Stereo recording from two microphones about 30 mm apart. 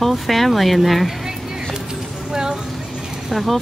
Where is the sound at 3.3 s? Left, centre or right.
Centre.